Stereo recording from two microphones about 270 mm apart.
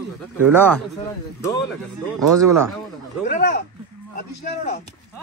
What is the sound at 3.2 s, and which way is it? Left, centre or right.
Speech, left.